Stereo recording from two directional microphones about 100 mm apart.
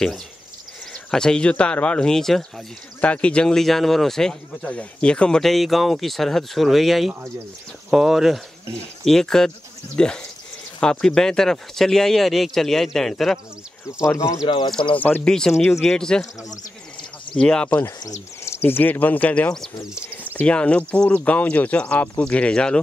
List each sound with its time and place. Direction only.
0.9 s speech: 5° left (ahead or behind)
14.0 s speech: 30° left (ahead or behind)
15.0 s speech: 15° left (ahead or behind)
15.8 s speech: 5° left (ahead or behind)
17.3 s speech: 10° left (ahead or behind)
17.8 s speech: 30° left (ahead or behind); by 19.7 s 10° left (ahead or behind)
19.8 s speech: 5° right (ahead or behind)
20.3 s speech: 10° left (ahead or behind)